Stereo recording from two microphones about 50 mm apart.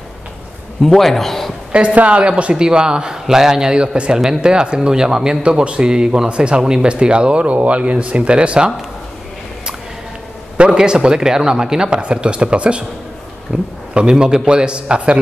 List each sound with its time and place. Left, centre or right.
0.8 s a man's voice: centre
1.7 s a man's voice: right
10.6 s a man's voice: centre